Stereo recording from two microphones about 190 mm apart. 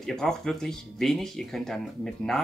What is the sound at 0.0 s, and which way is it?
Speech, 5° left (ahead or behind).